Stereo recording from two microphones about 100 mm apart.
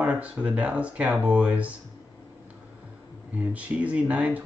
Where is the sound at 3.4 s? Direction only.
15° right (ahead or behind).